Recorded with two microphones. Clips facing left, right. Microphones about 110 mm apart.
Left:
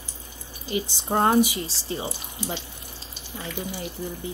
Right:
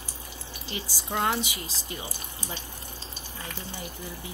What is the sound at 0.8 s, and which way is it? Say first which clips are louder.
Speech: left 5 dB; 25° left (ahead or behind).